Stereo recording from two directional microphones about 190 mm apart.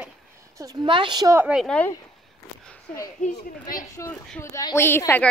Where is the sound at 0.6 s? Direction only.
20° right (ahead or behind).